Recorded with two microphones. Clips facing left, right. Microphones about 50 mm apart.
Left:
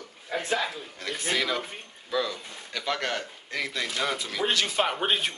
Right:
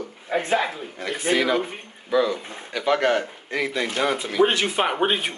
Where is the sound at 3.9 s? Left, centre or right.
Right.